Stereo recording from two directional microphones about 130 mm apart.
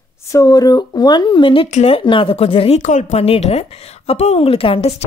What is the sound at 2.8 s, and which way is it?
A woman's voice, 70° left (ahead or behind).